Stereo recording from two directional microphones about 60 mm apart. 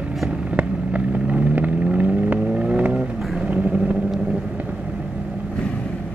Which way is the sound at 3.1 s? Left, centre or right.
Centre.